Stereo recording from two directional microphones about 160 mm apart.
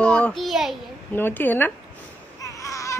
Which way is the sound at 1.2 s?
10° left (ahead or behind).